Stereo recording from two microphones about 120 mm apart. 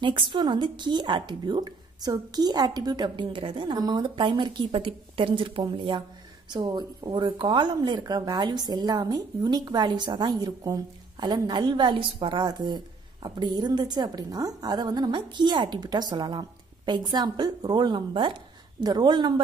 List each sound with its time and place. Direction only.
0.0 s speech: 40° right (ahead or behind)